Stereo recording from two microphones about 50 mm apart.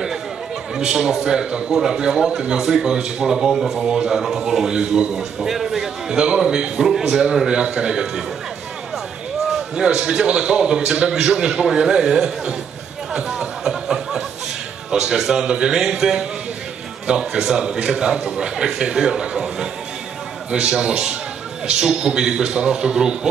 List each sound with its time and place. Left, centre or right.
0.7 s a man's voice: centre
9.5 s a sound: centre
9.9 s a man's voice: centre
13.1 s music: centre
14.9 s a man's voice: centre